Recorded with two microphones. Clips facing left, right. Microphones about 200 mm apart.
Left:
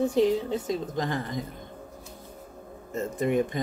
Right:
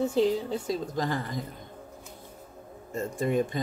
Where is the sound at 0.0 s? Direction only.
15° left (ahead or behind).